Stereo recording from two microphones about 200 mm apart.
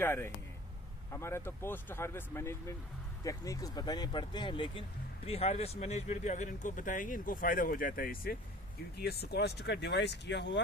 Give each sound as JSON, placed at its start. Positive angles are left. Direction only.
{"t": 0.0, "sound": "speech", "side_deg": 10}